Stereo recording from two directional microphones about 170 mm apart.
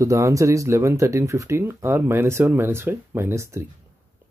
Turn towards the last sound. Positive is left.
turn(degrees=-15)  # may be behind; listen again after turning